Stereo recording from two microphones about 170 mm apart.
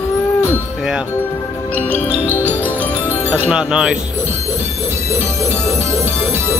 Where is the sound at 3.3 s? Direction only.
5° right (ahead or behind).